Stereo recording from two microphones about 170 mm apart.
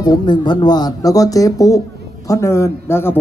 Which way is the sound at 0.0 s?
25° left (ahead or behind).